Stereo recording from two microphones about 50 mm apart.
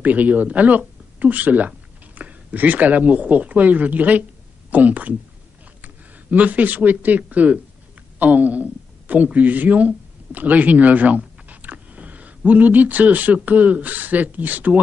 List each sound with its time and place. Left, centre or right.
0.0 s a woman's voice: right
6.3 s speech: right